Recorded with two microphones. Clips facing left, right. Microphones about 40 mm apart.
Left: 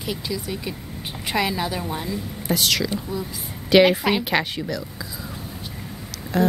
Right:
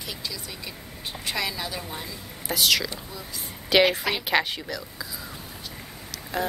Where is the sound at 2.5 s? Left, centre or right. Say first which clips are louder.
Left 2 dB; centre.